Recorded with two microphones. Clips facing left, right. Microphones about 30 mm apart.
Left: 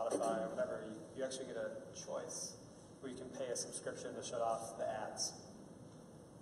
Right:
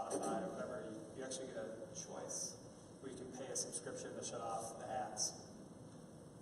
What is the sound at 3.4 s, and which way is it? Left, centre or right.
Speech, left.